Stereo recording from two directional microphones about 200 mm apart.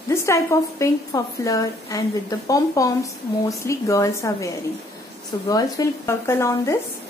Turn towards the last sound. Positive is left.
turn(degrees=15)  # may be behind; listen again after turning